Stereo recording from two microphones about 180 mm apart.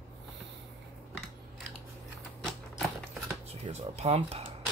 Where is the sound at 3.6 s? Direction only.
35° right (ahead or behind).